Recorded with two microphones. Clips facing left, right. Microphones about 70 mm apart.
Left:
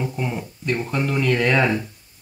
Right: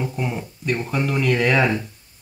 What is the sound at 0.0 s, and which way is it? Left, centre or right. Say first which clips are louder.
Speech: even; centre.